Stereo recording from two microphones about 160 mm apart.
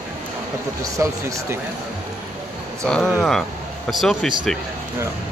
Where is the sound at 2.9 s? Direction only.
5° left (ahead or behind).